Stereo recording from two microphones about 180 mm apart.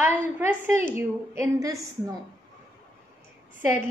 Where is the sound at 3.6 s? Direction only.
15° right (ahead or behind).